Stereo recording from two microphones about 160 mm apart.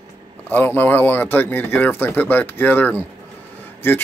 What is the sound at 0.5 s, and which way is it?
Speech, 10° left (ahead or behind).